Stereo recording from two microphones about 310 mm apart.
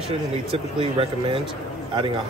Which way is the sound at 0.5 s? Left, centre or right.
Centre.